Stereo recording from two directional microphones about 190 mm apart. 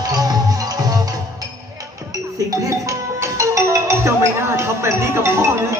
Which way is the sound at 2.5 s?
15° right (ahead or behind).